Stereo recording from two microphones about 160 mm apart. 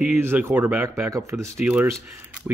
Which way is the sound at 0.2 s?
15° right (ahead or behind).